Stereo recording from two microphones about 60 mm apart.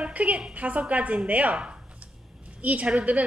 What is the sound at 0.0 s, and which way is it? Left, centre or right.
A woman's voice, right.